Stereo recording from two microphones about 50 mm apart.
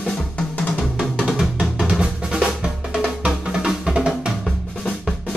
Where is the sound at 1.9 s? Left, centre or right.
Centre.